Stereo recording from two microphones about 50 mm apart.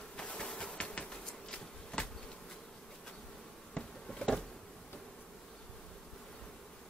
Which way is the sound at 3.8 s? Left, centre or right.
Centre.